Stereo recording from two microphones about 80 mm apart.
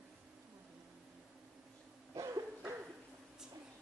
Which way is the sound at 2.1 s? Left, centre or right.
Right.